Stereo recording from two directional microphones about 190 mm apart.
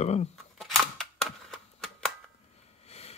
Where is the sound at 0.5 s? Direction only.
Centre (ahead or behind).